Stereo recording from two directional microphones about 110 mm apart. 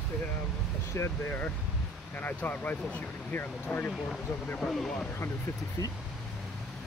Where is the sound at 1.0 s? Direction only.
20° left (ahead or behind).